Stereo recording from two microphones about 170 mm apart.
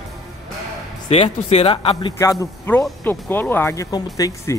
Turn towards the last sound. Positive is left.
turn(degrees=20)  # may be behind; listen again after turning